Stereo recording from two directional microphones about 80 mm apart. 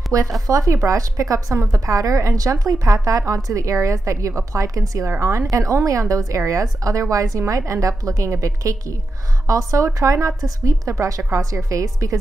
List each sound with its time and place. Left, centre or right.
0.1 s a woman's voice: right